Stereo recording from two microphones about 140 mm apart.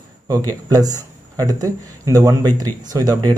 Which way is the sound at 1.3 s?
25° right (ahead or behind).